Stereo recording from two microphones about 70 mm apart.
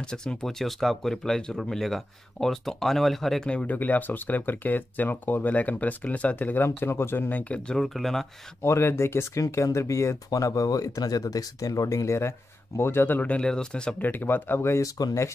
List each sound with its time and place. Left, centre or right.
0.0 s speech: centre
3.4 s speech: centre
7.8 s speech: centre
8.6 s speech: left
12.2 s speech: left
13.4 s speech: centre
13.9 s speech: left
14.8 s speech: left